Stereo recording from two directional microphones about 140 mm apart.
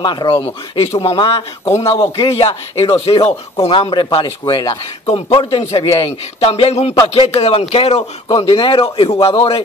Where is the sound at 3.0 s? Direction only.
45° left (ahead or behind).